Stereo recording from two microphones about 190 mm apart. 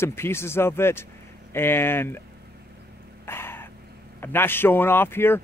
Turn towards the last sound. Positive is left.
turn(degrees=10)  # may be behind; listen again after turning